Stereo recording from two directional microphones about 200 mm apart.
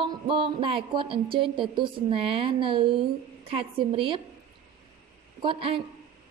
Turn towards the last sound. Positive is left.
turn(degrees=-25)  # may be behind; listen again after turning